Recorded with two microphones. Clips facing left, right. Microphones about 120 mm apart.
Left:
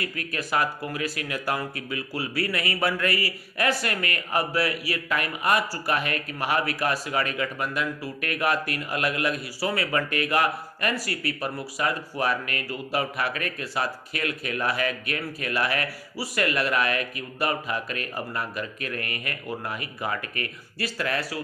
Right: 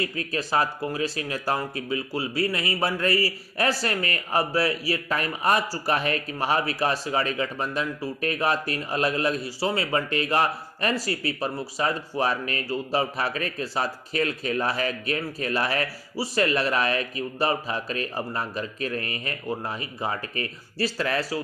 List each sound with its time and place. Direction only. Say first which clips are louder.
0.0 s speech: right 3 dB; 30° right (ahead or behind)